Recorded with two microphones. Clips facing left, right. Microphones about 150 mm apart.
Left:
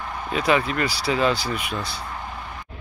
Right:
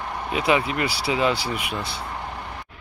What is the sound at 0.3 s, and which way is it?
Speech, 15° right (ahead or behind).